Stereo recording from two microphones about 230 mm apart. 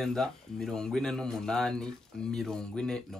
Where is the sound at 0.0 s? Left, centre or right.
Centre.